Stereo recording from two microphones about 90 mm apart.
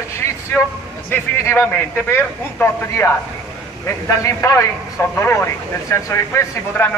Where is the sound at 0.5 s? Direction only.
15° left (ahead or behind); by 6.4 s 35° left (ahead or behind).